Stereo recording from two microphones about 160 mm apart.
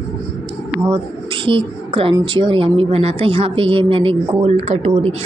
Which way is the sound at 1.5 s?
35° right (ahead or behind).